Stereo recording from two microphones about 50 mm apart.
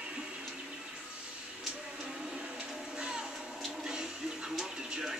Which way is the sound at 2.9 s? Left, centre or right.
Centre.